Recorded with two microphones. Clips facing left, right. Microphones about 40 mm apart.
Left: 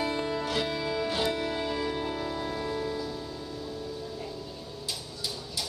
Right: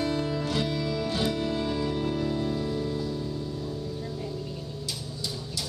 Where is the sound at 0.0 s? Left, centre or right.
Centre.